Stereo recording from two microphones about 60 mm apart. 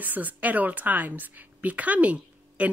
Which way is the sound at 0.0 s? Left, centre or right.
Right.